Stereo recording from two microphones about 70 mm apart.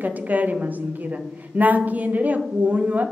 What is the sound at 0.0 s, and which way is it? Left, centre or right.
A woman's voice, right.